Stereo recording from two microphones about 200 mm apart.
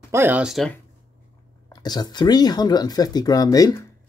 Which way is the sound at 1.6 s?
20° left (ahead or behind).